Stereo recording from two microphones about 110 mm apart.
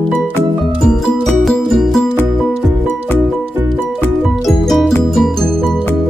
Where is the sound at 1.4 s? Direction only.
5° left (ahead or behind).